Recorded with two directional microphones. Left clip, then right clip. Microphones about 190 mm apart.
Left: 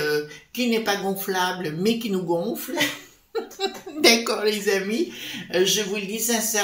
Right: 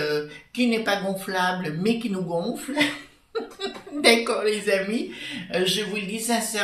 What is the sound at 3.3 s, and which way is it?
Speech, 50° left (ahead or behind).